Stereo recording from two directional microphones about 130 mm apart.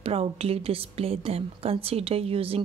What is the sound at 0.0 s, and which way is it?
A woman's voice, 50° right (ahead or behind).